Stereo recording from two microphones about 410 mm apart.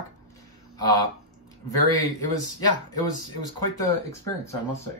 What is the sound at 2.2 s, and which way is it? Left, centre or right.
Speech, left.